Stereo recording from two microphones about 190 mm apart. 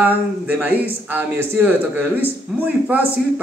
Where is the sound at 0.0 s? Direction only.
10° right (ahead or behind).